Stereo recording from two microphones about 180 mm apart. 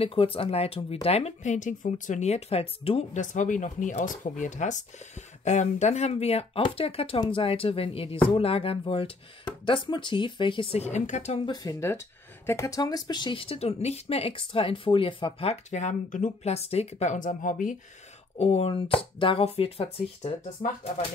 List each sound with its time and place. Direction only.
0.0 s speech: 30° left (ahead or behind)
11.4 s speech: 20° left (ahead or behind); by 17.7 s 45° left (ahead or behind)
18.4 s speech: 35° left (ahead or behind)